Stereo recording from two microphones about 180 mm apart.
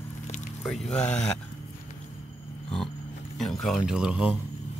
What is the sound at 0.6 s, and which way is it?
Mantra, centre (ahead or behind).